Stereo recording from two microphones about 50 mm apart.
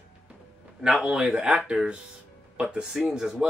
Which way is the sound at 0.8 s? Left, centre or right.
Centre.